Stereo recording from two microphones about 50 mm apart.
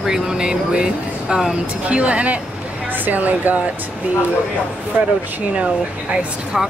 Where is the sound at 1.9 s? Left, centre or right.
Right.